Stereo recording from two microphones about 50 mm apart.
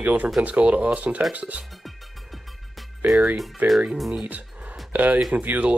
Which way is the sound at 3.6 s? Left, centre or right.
Right.